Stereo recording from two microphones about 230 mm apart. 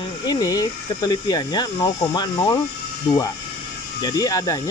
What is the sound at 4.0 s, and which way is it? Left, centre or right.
Speech, centre.